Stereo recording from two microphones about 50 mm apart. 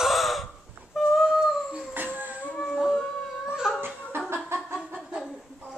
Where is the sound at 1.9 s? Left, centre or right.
Right.